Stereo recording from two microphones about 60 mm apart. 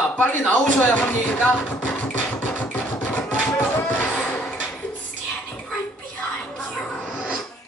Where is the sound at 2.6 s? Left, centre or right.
Left.